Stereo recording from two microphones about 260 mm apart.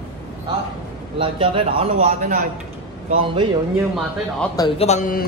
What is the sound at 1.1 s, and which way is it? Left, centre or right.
A man's voice, centre.